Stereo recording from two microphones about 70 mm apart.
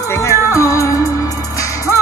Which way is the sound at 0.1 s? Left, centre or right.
Left.